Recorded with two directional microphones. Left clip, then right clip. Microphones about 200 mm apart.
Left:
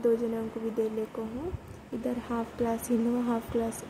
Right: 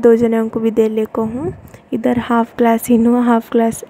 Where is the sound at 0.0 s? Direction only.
45° right (ahead or behind).